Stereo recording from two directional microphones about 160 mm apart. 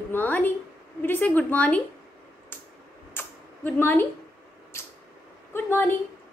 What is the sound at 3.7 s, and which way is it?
Speech, 10° left (ahead or behind).